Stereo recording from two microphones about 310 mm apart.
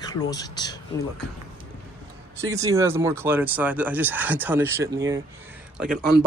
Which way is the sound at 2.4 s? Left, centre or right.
Centre.